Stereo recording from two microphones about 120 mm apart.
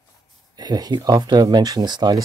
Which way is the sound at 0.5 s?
35° right (ahead or behind).